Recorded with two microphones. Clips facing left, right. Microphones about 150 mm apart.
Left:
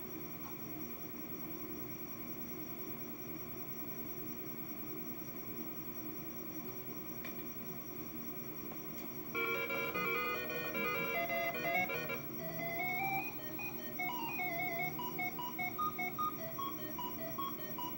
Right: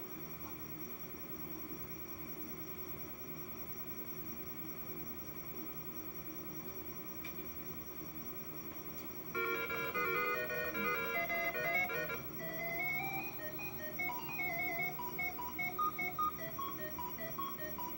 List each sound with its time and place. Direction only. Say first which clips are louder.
9.3 s music: even; 15° left (ahead or behind)